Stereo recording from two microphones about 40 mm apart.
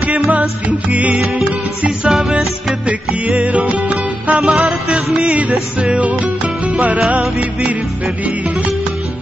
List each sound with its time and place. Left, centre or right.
0.3 s music: right
2.0 s music: centre
2.9 s music: right
4.4 s music: centre
5.3 s music: right